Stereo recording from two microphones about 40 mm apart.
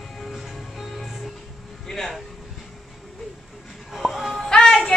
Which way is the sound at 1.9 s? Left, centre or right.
Centre.